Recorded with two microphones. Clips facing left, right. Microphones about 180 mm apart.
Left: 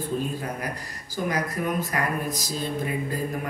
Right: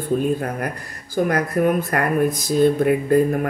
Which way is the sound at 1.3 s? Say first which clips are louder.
Right 7 dB; 55° right (ahead or behind).